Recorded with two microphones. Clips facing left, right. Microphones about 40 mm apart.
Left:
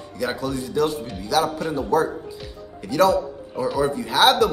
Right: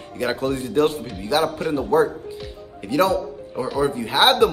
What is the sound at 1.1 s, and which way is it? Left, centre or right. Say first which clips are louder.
A man's voice: left 2 dB; right.